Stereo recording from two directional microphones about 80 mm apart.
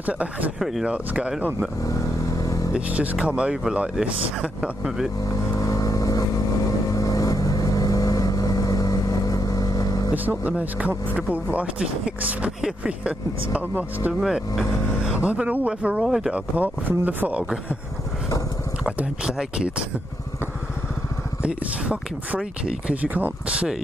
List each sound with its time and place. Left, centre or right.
0.0 s speech: right
0.6 s speech: centre
0.9 s speech: centre
2.4 s vehicle: left
2.7 s speech: centre
5.6 s vehicle: left
10.1 s speech: right
14.2 s speech: centre
15.2 s speech: centre
16.0 s speech: centre; by 17.4 s right
18.9 s speech: centre
21.4 s speech: centre